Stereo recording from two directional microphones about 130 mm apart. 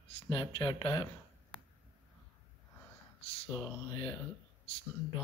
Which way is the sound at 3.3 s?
50° left (ahead or behind).